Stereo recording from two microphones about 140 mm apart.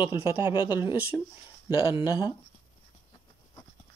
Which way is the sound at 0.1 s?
15° right (ahead or behind).